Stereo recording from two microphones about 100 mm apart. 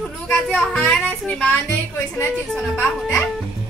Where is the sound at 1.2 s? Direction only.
5° left (ahead or behind).